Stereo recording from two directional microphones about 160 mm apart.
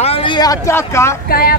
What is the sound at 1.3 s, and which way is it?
Speech, 70° left (ahead or behind).